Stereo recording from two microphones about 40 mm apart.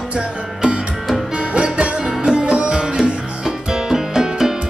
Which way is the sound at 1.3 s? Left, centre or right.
Right.